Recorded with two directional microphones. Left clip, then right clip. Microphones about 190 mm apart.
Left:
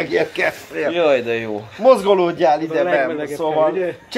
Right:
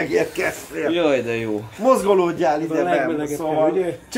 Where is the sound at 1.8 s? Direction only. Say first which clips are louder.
Left 3 dB; 25° left (ahead or behind).